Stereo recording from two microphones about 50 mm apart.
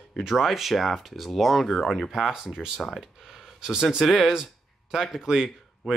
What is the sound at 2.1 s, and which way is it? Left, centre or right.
Speech, centre.